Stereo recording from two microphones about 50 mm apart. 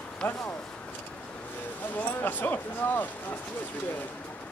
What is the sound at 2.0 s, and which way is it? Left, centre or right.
Speech, left.